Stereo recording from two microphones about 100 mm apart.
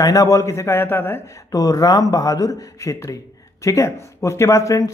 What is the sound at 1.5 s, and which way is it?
A man's voice, 35° left (ahead or behind).